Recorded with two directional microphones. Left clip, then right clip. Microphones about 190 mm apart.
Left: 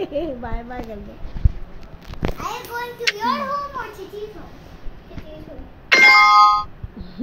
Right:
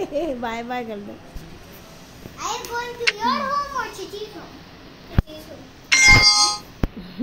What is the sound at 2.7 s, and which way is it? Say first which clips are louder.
Children playing: left 1 dB; 20° right (ahead or behind).